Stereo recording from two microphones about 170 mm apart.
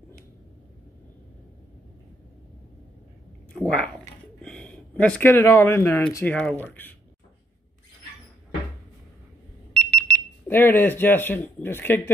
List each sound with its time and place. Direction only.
3.5 s speech: 5° left (ahead or behind)
4.4 s a sound: 5° left (ahead or behind)
6.1 s speech: 10° left (ahead or behind)
9.8 s speech: 5° left (ahead or behind)